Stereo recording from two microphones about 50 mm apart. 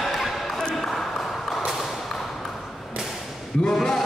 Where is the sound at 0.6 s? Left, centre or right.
Centre.